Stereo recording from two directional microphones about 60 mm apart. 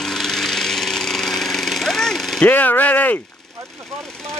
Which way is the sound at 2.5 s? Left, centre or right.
Left.